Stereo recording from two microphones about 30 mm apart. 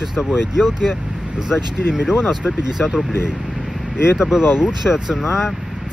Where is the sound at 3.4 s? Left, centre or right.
Centre.